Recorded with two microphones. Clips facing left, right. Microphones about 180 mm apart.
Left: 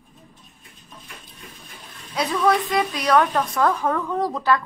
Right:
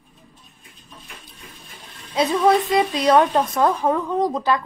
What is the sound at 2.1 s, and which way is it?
A woman's voice, 25° right (ahead or behind).